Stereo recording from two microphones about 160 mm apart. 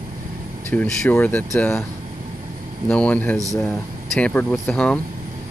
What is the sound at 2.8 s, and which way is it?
Speech, 10° left (ahead or behind).